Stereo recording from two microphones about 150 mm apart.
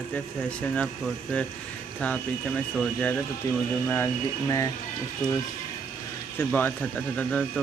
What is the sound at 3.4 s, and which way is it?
Speech, 20° left (ahead or behind).